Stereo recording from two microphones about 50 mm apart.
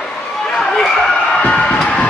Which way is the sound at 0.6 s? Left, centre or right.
Centre.